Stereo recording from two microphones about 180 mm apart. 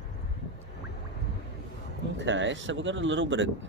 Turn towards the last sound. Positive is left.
turn(degrees=-90)